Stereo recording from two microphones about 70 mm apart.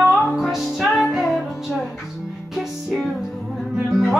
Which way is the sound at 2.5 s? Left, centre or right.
Centre.